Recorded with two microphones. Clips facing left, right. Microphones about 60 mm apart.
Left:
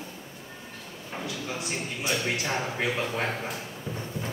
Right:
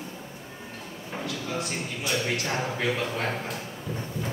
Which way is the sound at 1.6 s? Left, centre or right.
Centre.